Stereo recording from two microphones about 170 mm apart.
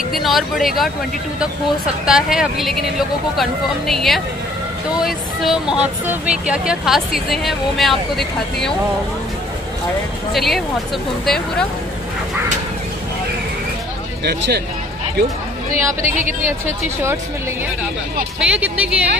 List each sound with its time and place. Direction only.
0.1 s speech: centre (ahead or behind)
2.0 s speech: 5° right (ahead or behind)
10.3 s speech: centre (ahead or behind)
14.2 s speech: 75° right (ahead or behind)
18.4 s speech: 5° right (ahead or behind)